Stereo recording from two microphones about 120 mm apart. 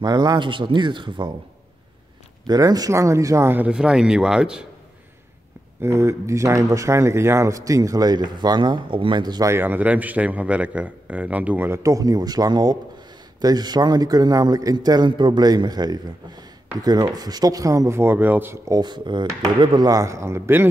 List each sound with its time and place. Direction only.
0.0 s a man's voice: 35° right (ahead or behind)
2.4 s a man's voice: 30° right (ahead or behind); by 4.6 s 5° right (ahead or behind)
5.8 s speech: 25° right (ahead or behind)
9.5 s a man's voice: 15° right (ahead or behind)
18.7 s a man's voice: 35° right (ahead or behind); by 20.6 s 20° right (ahead or behind)